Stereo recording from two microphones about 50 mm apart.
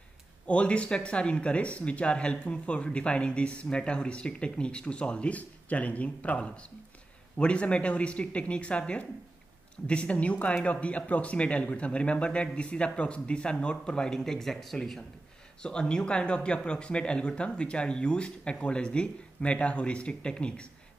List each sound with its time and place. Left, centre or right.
0.5 s speech: left